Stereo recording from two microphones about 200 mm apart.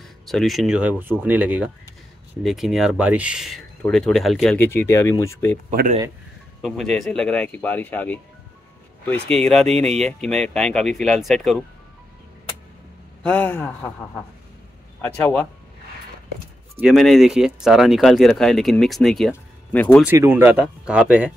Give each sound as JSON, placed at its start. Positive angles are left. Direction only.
{"t": 0.3, "sound": "speech", "side_deg": 0}
{"t": 5.7, "sound": "speech", "side_deg": -40}
{"t": 6.6, "sound": "speech", "side_deg": 0}
{"t": 13.2, "sound": "speech", "side_deg": 10}
{"t": 15.0, "sound": "speech", "side_deg": 10}
{"t": 16.8, "sound": "speech", "side_deg": 0}
{"t": 20.0, "sound": "speech", "side_deg": -10}